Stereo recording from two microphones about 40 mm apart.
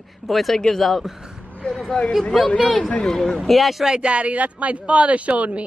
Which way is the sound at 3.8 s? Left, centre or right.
Right.